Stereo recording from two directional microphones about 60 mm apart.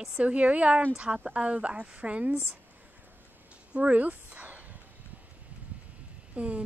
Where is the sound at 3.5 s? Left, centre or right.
Right.